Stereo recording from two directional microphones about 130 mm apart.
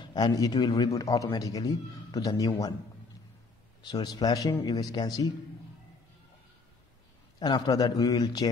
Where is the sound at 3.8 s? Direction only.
35° left (ahead or behind).